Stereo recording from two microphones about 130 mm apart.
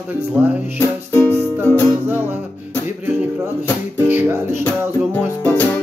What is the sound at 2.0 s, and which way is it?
Music, 15° right (ahead or behind).